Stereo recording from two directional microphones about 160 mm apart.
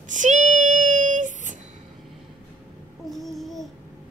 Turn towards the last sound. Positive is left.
turn(degrees=0)  # may be behind; listen again after turning